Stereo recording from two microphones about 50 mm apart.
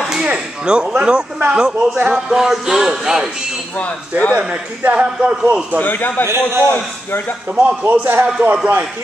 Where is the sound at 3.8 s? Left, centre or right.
Left.